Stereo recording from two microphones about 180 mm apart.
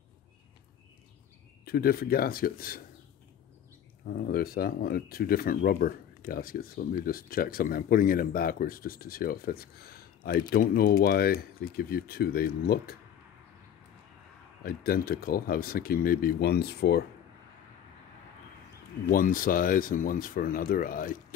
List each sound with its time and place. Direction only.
1.6 s speech: 60° left (ahead or behind)
4.1 s speech: 55° left (ahead or behind)
14.6 s speech: 55° left (ahead or behind)
19.0 s speech: 50° left (ahead or behind)